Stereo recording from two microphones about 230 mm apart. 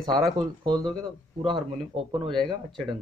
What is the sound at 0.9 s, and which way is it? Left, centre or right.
Speech, centre.